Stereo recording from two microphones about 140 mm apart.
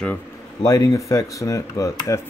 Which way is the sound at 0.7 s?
25° left (ahead or behind).